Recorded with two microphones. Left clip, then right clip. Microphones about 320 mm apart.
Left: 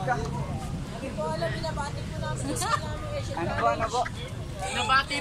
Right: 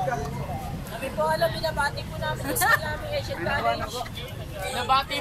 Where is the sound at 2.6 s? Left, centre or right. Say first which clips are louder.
Right 7 dB; right.